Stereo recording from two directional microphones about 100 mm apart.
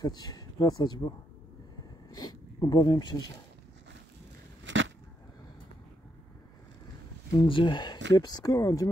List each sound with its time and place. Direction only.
0.0 s speech: 40° left (ahead or behind)
7.3 s speech: 55° left (ahead or behind); by 8.9 s 30° left (ahead or behind)